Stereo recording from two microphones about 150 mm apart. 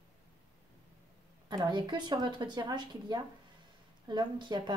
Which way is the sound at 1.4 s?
30° right (ahead or behind).